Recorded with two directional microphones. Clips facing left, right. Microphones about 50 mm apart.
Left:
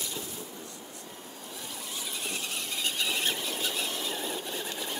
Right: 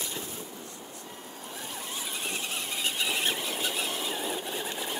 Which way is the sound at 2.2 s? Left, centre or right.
Right.